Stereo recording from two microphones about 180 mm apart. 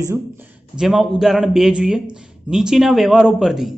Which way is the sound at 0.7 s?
Centre (ahead or behind).